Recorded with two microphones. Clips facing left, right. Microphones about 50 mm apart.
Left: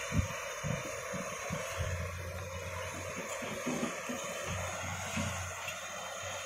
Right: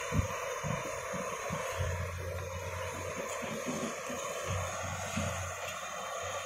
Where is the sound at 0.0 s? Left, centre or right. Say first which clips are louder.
Right 2 dB; centre.